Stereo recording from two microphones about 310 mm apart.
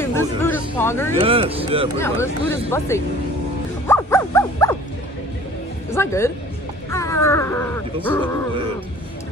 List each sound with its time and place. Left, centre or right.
0.0 s speech: centre
1.2 s speech: centre
2.0 s speech: centre
3.8 s dog: centre
5.9 s speech: centre